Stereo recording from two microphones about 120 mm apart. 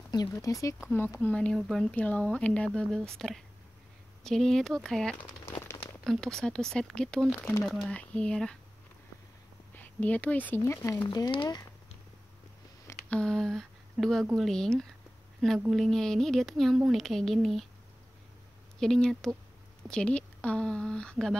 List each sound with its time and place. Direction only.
0.1 s speech: 30° left (ahead or behind)
0.8 s speech: 15° left (ahead or behind)
5.5 s crumpling: 20° left (ahead or behind)
6.0 s speech: 5° left (ahead or behind)
9.8 s speech: 10° left (ahead or behind)
11.1 s speech: 35° left (ahead or behind)
13.1 s speech: 5° left (ahead or behind)
18.8 s speech: 5° left (ahead or behind)